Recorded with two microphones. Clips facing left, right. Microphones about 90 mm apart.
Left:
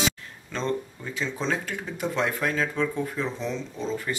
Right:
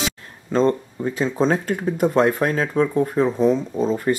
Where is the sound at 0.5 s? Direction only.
45° right (ahead or behind).